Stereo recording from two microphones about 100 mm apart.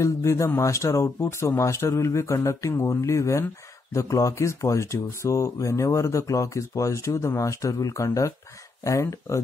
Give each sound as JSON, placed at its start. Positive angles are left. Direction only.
{"t": 0.0, "sound": "speech", "side_deg": 30}